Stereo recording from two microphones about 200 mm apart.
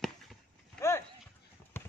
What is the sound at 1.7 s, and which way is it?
Run, 10° left (ahead or behind).